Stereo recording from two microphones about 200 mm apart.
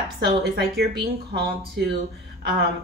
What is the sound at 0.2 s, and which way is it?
Speech, 55° right (ahead or behind).